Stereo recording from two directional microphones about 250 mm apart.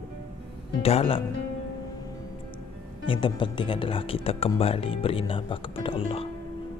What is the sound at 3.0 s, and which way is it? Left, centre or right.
Speech, left.